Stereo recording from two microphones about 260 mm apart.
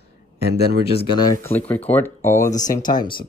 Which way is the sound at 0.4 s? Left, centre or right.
Right.